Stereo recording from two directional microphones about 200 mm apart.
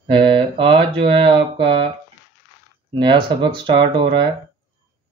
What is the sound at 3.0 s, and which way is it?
Speech, 25° right (ahead or behind).